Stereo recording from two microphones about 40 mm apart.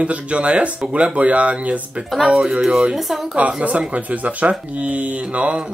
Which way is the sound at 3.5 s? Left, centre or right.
Right.